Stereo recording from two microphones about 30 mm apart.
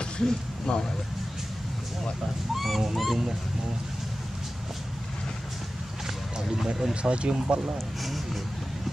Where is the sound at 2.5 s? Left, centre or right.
Centre.